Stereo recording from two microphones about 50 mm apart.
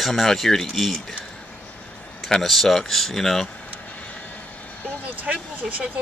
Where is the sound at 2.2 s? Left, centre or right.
Centre.